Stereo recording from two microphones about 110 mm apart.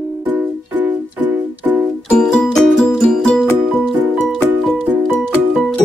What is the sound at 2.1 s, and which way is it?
Music, 5° left (ahead or behind).